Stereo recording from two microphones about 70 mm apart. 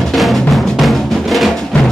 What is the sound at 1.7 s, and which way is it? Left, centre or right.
Music, centre.